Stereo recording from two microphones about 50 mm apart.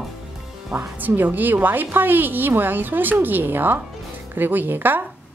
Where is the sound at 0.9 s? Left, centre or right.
Right.